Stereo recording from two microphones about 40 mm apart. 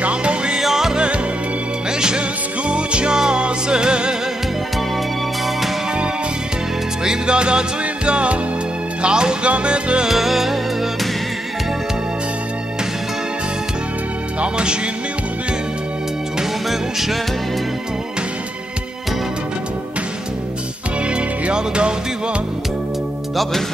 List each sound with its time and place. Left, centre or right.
0.0 s music: right
0.6 s music: centre
0.9 s music: right
7.1 s music: right
10.0 s music: centre
14.4 s music: right
16.6 s music: centre
21.1 s music: right